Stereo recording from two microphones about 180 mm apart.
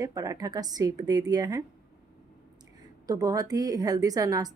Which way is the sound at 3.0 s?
20° right (ahead or behind).